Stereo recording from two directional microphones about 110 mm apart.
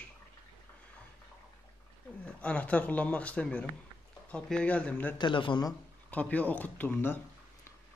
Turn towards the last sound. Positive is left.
turn(degrees=20)  # may be behind; listen again after turning